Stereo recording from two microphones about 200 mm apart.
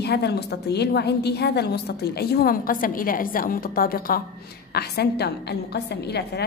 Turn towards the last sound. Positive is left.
turn(degrees=55)  # may be behind; listen again after turning